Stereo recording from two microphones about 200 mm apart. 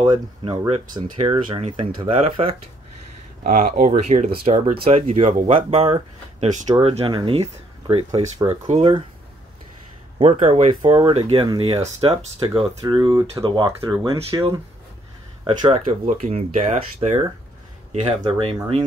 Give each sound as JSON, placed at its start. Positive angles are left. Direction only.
{"t": 0.0, "sound": "speech", "side_deg": -25}
{"t": 3.4, "sound": "speech", "side_deg": -40}
{"t": 8.6, "sound": "speech", "side_deg": -35}
{"t": 10.1, "sound": "speech", "side_deg": -30}
{"t": 10.7, "sound": "speech", "side_deg": -25}